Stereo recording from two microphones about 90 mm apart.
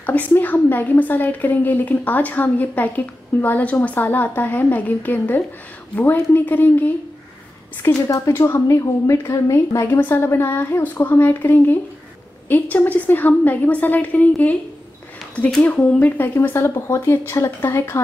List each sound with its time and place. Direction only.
0.0 s a woman's voice: 20° left (ahead or behind)
7.8 s a woman's voice: 30° left (ahead or behind)